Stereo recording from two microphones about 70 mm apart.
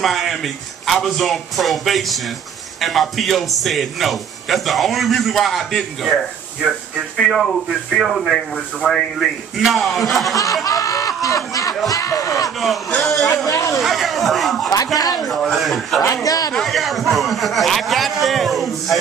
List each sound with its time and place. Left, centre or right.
0.0 s a man's voice: centre
10.3 s speech: left
12.5 s a man's voice: centre
13.5 s speech: left
13.7 s a man's voice: centre
16.3 s a man's voice: left
16.5 s a man's voice: centre